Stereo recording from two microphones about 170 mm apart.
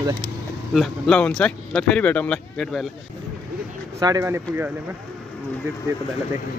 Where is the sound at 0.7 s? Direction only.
5° left (ahead or behind).